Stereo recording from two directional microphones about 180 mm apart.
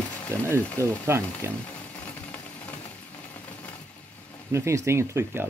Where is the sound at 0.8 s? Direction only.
15° right (ahead or behind).